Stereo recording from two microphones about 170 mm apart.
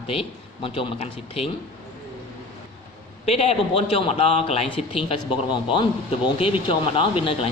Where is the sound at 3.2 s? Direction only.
35° left (ahead or behind).